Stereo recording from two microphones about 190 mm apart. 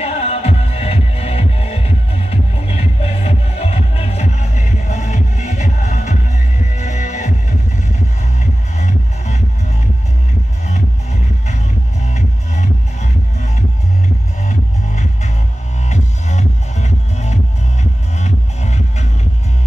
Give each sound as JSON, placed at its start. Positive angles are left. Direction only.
{"t": 0.0, "sound": "music", "side_deg": 35}
{"t": 6.8, "sound": "heart sounds", "side_deg": 40}
{"t": 8.4, "sound": "music", "side_deg": 40}
{"t": 10.7, "sound": "music", "side_deg": 40}